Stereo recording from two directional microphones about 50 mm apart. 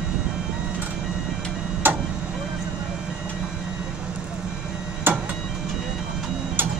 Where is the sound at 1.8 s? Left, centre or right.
Right.